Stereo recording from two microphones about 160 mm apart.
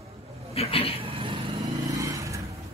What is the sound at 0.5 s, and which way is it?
Speech, 35° left (ahead or behind).